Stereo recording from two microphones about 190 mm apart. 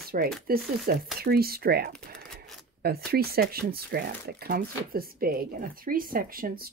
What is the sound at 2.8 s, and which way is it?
A woman's voice, 55° right (ahead or behind).